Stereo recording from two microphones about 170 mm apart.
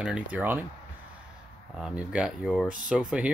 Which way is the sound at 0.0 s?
5° right (ahead or behind).